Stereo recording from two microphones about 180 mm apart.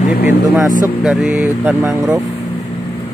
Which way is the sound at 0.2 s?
10° right (ahead or behind).